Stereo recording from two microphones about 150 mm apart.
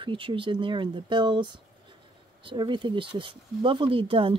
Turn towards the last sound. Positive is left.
turn(degrees=-35)  # may be behind; listen again after turning